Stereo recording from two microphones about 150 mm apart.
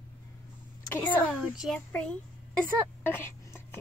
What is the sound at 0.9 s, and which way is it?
Speech, 15° left (ahead or behind).